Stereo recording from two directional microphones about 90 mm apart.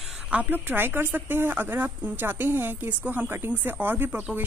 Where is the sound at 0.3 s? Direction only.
20° right (ahead or behind).